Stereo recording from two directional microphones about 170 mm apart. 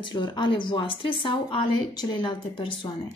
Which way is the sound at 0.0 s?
25° left (ahead or behind).